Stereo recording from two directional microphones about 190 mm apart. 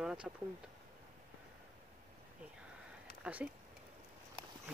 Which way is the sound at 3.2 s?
5° right (ahead or behind).